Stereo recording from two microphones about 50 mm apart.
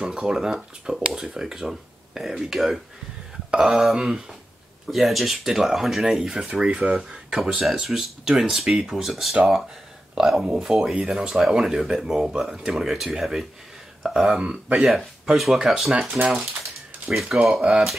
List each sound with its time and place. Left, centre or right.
0.0 s speech: centre
4.8 s speech: centre
14.4 s speech: right
15.2 s speech: centre
16.2 s speech: right
17.1 s speech: centre